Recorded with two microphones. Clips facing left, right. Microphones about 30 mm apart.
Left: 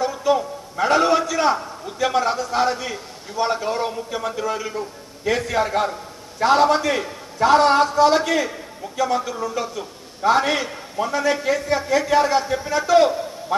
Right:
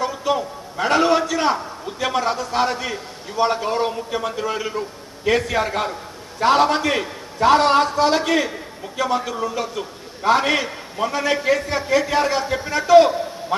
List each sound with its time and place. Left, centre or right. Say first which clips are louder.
0.2 s a man's voice: left 2 dB; right